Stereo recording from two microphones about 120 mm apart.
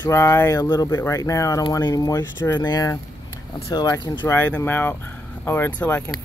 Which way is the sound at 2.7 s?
30° left (ahead or behind).